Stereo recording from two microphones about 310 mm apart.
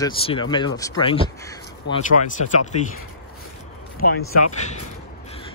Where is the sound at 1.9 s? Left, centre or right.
Left.